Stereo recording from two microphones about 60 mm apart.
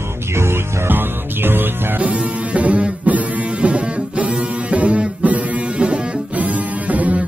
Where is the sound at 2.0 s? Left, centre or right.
Right.